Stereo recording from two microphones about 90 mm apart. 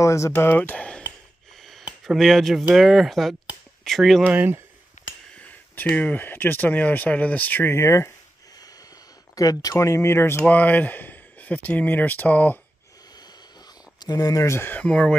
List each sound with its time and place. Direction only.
0.0 s speech: 35° left (ahead or behind); by 1.0 s 15° left (ahead or behind)
1.6 s a sound: centre (ahead or behind)
2.0 s speech: centre (ahead or behind)
4.2 s speech: 20° right (ahead or behind)
5.9 s speech: 15° left (ahead or behind); by 8.1 s 30° left (ahead or behind)
9.3 s speech: 40° left (ahead or behind); by 12.5 s 20° left (ahead or behind)
13.9 s speech: 45° left (ahead or behind); by 14.8 s 30° left (ahead or behind)
14.8 s speech: 10° left (ahead or behind)